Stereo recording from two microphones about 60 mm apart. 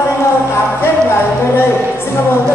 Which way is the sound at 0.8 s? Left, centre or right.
Left.